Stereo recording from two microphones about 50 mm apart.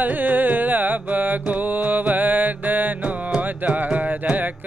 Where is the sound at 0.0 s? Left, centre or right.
Right.